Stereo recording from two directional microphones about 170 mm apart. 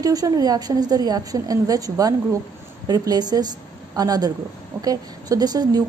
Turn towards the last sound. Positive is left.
turn(degrees=-25)  # may be behind; listen again after turning